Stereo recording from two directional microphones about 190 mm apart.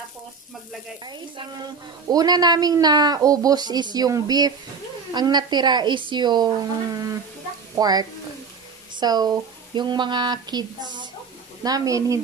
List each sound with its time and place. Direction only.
1.0 s a woman's voice: 20° right (ahead or behind)